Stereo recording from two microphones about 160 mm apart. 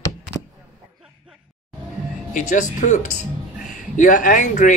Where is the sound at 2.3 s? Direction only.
55° left (ahead or behind).